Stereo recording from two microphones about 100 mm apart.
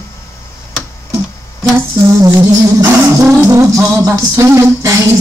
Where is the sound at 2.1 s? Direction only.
35° right (ahead or behind).